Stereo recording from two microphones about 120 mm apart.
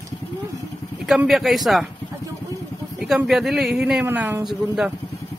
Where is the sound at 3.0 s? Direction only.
5° right (ahead or behind).